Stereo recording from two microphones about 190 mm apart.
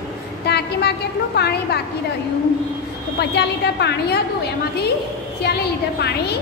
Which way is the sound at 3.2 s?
60° left (ahead or behind).